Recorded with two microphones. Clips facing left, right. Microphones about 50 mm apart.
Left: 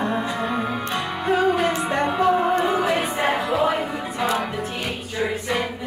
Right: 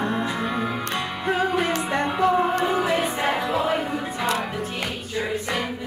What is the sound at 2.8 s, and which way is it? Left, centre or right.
Music, left.